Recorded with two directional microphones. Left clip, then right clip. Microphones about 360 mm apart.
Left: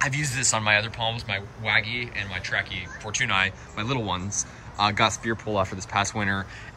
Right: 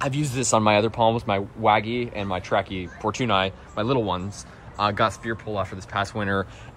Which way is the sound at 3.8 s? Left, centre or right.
Centre.